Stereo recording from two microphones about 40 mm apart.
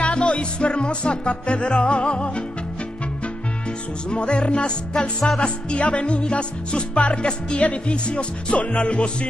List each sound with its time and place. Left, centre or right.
0.0 s music: left
4.1 s music: left